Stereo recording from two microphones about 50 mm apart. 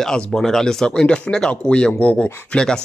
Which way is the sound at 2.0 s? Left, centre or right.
Left.